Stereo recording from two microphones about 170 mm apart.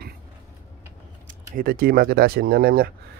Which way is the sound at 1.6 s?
60° right (ahead or behind).